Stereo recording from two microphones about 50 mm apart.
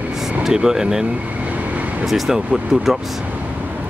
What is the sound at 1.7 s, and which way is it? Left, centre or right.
Vehicle, right.